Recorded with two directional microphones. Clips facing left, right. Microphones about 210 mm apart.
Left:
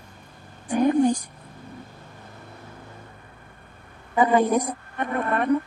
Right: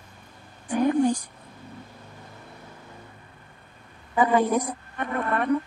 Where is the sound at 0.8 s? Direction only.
20° left (ahead or behind).